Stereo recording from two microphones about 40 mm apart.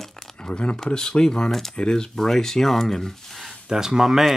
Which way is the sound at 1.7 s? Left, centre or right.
Centre.